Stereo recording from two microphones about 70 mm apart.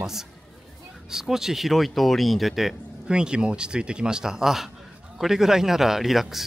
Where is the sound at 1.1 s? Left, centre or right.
Centre.